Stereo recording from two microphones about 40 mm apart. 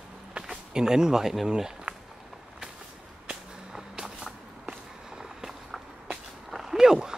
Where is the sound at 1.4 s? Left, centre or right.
Centre.